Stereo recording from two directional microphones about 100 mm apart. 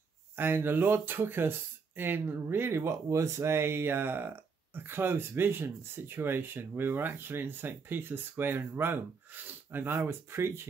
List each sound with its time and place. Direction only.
0.4 s speech: 20° right (ahead or behind)